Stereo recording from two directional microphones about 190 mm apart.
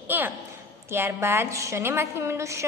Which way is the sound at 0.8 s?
15° right (ahead or behind).